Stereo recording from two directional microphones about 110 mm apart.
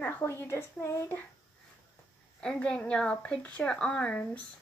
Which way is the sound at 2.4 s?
10° left (ahead or behind).